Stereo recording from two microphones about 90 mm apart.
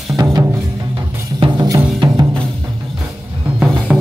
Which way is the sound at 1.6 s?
50° right (ahead or behind).